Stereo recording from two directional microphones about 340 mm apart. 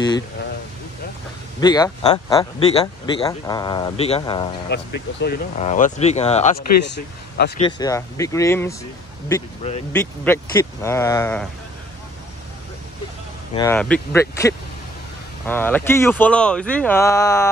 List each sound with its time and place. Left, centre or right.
1.6 s speech: centre
4.7 s speech: left
6.8 s speech: left
7.6 s speech: centre
10.2 s speech: centre
13.6 s speech: centre